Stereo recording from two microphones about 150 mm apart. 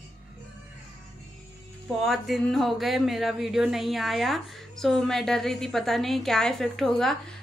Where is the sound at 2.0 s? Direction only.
Centre (ahead or behind).